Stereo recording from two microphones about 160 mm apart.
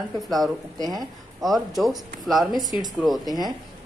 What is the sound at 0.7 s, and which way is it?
Speech, 25° right (ahead or behind).